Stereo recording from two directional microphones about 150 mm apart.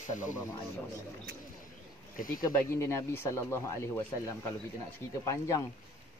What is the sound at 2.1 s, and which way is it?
Speech, 70° left (ahead or behind).